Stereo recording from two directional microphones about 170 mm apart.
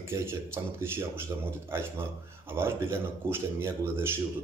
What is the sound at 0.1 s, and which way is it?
Speech, 15° right (ahead or behind).